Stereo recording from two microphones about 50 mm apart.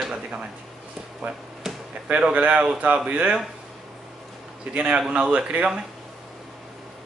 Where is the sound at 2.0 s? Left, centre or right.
Right.